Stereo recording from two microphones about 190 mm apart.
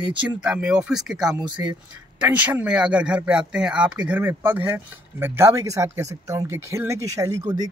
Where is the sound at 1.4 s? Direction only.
25° right (ahead or behind).